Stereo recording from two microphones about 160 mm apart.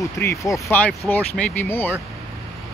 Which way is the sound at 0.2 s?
15° left (ahead or behind).